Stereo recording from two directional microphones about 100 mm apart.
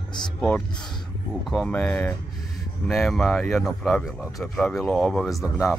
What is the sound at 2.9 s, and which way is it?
Speech, 5° left (ahead or behind).